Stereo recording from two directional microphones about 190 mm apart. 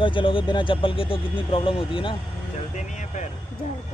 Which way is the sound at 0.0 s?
25° left (ahead or behind).